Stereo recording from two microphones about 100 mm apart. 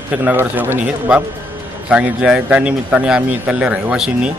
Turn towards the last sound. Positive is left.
turn(degrees=-10)  # may be behind; listen again after turning